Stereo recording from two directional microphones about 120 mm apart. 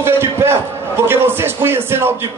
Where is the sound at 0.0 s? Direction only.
20° right (ahead or behind).